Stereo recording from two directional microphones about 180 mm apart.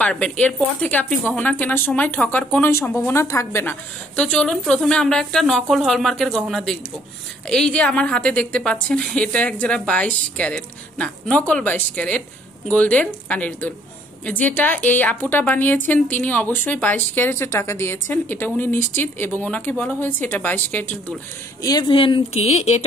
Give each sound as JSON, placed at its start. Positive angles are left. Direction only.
{"t": 0.0, "sound": "a woman's voice", "side_deg": 5}
{"t": 21.6, "sound": "speech", "side_deg": 25}